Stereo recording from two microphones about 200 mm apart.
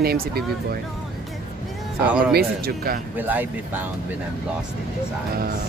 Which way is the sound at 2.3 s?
50° right (ahead or behind).